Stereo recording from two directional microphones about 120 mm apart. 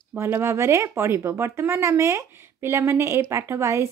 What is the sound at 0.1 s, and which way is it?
Speech, 20° right (ahead or behind).